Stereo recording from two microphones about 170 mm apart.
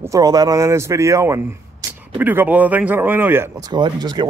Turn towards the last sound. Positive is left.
turn(degrees=-25)  # may be behind; listen again after turning